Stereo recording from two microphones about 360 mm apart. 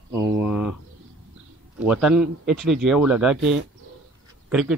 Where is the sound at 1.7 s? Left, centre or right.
Centre.